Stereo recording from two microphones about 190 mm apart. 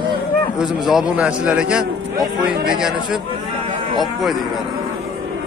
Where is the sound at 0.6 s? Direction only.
Centre (ahead or behind).